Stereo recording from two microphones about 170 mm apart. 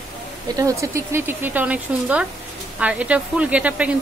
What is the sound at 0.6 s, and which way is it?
Speech, 15° right (ahead or behind).